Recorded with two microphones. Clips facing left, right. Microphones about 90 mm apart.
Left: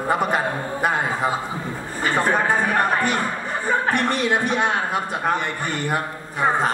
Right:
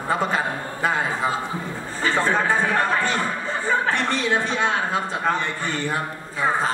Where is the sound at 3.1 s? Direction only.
15° left (ahead or behind).